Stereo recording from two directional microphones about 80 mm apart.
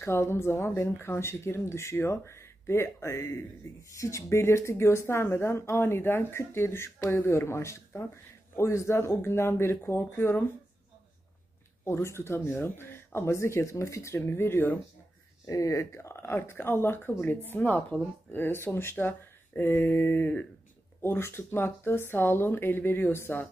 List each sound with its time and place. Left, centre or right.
0.0 s speech: left
11.8 s speech: left
15.4 s speech: left